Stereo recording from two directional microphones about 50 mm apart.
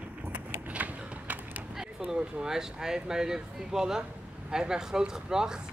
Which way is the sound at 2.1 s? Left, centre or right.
Centre.